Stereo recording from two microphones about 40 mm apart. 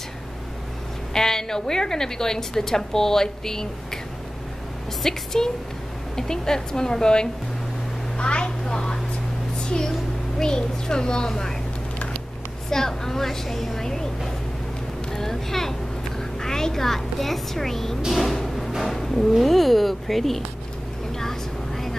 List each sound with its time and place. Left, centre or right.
1.1 s a woman's voice: centre
5.0 s a sound: centre
6.1 s a woman's voice: centre
12.6 s a woman's voice: centre
18.1 s vehicle: centre
18.8 s a woman's voice: centre
21.2 s vehicle: centre